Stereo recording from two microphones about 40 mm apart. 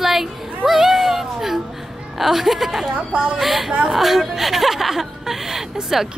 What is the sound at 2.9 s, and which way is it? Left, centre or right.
Speech, right.